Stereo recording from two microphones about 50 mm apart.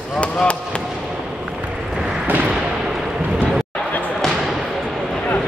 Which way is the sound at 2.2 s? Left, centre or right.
Right.